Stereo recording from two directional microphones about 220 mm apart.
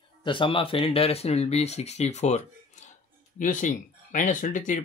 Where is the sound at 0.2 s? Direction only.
20° left (ahead or behind).